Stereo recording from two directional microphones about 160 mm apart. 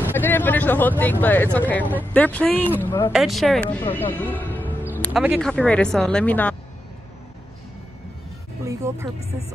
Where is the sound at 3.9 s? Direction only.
10° left (ahead or behind).